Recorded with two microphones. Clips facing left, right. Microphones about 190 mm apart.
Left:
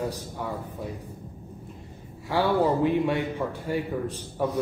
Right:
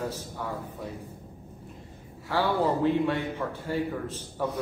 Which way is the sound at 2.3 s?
15° left (ahead or behind).